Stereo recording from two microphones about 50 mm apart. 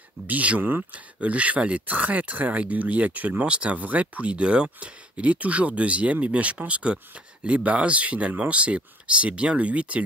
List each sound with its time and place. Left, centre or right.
0.3 s speech: right
0.6 s speech: right
0.9 s speech: right